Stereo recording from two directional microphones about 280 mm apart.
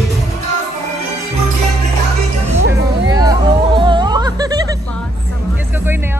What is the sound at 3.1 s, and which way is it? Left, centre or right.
Music, centre.